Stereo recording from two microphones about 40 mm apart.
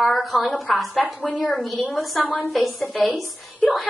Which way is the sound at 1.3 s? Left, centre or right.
Left.